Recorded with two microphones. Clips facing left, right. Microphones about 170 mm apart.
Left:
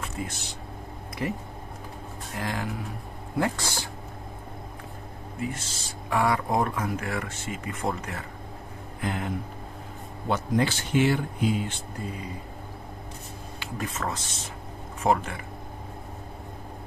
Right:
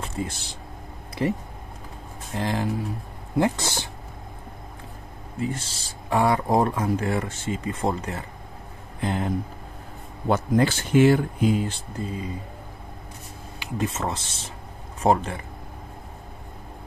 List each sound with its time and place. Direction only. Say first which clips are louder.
0.0 s vehicle: right 4 dB; 30° right (ahead or behind)
1.2 s speech: right 6 dB; 30° right (ahead or behind)
5.4 s speech: right 4 dB; 30° right (ahead or behind)
10.3 s speech: right 4 dB; 45° right (ahead or behind)
13.6 s speech: right 5 dB; 25° right (ahead or behind)